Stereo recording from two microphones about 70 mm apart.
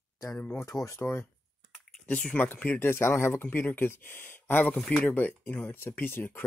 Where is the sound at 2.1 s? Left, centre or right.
Centre.